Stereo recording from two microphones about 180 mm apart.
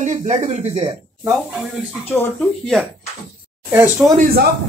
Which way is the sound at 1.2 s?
Centre (ahead or behind).